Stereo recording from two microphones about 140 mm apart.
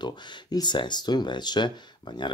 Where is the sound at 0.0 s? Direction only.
30° left (ahead or behind).